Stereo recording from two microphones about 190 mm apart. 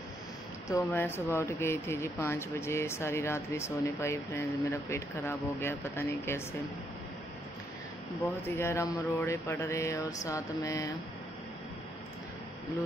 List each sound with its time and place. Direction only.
0.7 s speech: 15° left (ahead or behind)
8.5 s speech: 15° left (ahead or behind)